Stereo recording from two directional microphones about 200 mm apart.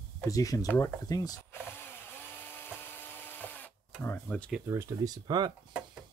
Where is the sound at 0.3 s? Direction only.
15° left (ahead or behind).